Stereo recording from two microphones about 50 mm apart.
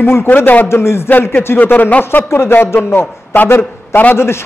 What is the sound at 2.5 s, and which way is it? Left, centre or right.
A man's voice, left.